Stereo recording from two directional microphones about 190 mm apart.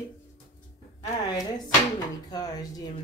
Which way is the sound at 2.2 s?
20° left (ahead or behind).